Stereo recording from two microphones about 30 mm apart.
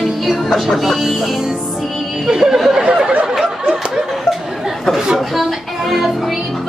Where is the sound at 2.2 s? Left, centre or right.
Centre.